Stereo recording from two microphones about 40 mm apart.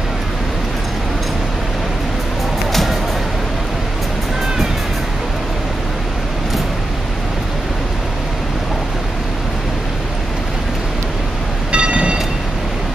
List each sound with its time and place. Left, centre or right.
2.7 s music: centre
11.7 s train: right